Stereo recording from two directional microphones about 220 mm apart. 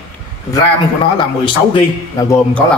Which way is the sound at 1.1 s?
20° left (ahead or behind).